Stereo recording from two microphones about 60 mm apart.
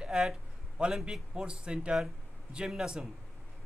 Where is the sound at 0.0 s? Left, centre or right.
Centre.